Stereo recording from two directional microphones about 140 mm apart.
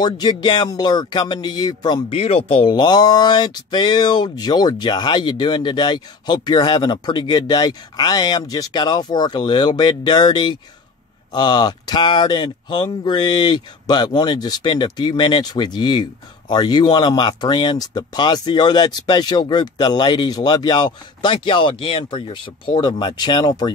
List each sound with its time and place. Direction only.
0.0 s speech: 30° left (ahead or behind)
2.1 s speech: 45° left (ahead or behind); by 23.7 s 30° left (ahead or behind)